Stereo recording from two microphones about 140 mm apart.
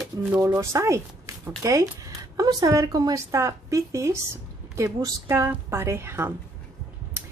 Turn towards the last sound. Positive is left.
turn(degrees=-20)  # may be behind; listen again after turning